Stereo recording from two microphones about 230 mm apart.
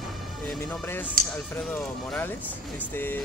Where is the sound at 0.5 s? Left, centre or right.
Centre.